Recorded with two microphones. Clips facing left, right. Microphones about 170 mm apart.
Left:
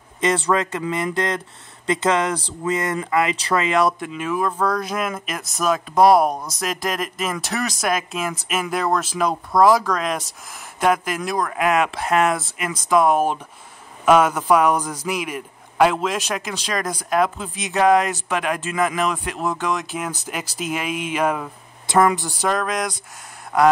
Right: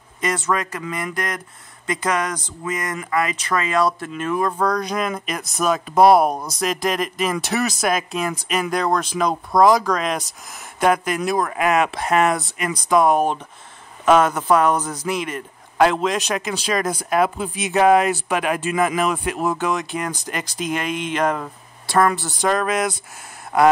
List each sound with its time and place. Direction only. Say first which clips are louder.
0.2 s speech: left 3 dB; 25° left (ahead or behind)
4.1 s speech: right 1 dB; 5° left (ahead or behind)
22.5 s speech: right 3 dB; 5° right (ahead or behind)